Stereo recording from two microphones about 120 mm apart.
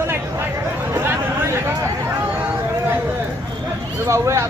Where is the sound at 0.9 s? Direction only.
20° right (ahead or behind).